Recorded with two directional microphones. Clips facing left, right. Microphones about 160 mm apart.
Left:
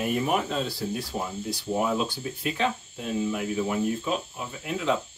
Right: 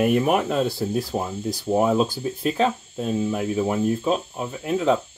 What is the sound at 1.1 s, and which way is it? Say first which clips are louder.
Speech: right 5 dB; 40° right (ahead or behind).